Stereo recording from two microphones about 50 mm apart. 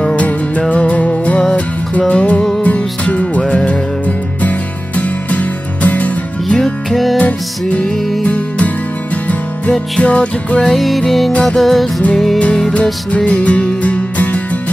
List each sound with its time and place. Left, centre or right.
0.0 s music: left
6.5 s music: centre
7.2 s music: left
10.0 s music: left
10.7 s music: centre
13.1 s music: left